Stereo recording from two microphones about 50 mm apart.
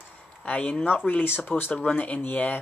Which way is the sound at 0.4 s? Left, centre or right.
Left.